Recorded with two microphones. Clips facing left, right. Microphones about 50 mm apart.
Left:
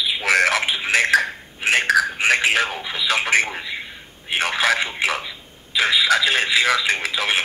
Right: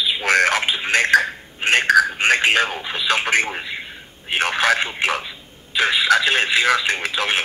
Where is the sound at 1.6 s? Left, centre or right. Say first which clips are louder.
Right 2 dB; centre.